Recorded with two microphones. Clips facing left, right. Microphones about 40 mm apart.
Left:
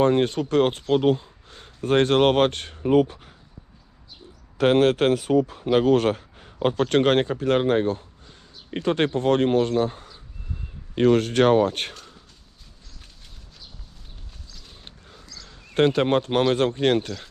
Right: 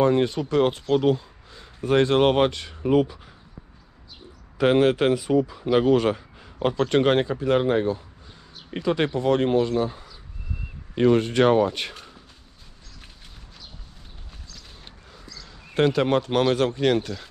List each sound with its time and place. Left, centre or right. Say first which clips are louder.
0.0 s speech: left 1 dB; left
1.0 s a sound: left 1 dB; left
1.9 s speech: even; left
4.6 s speech: left 1 dB; left
11.0 s speech: even; left
15.2 s a sound: right 1 dB; centre
15.7 s speech: left 1 dB; left